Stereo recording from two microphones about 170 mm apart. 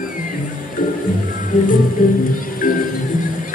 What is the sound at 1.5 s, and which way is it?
Music, 50° left (ahead or behind).